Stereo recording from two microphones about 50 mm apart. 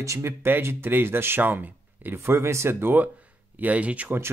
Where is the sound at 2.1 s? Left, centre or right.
Right.